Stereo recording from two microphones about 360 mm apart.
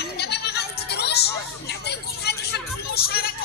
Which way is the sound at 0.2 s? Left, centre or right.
Left.